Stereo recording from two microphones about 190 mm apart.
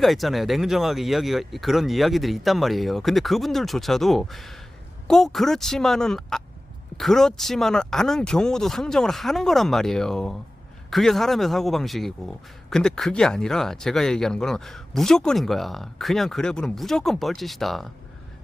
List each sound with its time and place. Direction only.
0.0 s speech: centre (ahead or behind)